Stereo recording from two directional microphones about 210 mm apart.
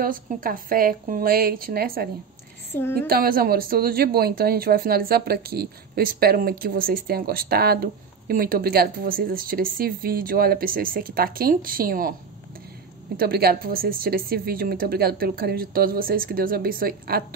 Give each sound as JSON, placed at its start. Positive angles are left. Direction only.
{"t": 0.0, "sound": "speech", "side_deg": -40}
{"t": 2.7, "sound": "a woman's voice", "side_deg": 10}
{"t": 3.1, "sound": "speech", "side_deg": -45}
{"t": 13.2, "sound": "speech", "side_deg": -45}